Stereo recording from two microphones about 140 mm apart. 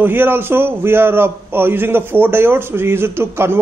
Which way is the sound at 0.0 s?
15° right (ahead or behind).